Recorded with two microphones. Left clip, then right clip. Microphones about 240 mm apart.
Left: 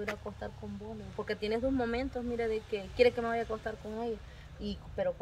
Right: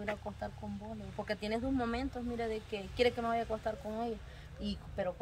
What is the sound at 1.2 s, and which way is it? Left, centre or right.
Speech, centre.